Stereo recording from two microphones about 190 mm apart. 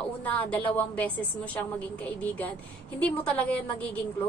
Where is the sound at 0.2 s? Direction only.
10° left (ahead or behind).